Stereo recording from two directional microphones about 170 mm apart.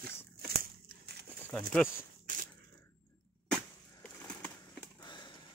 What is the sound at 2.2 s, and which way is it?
Crushing, 50° right (ahead or behind).